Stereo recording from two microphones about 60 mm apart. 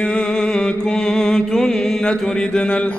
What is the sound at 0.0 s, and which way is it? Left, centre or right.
Mantra, centre.